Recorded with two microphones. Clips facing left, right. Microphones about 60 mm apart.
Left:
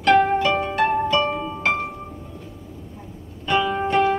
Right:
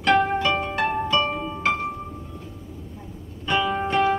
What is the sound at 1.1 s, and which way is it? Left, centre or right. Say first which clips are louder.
Music: left 2 dB; centre.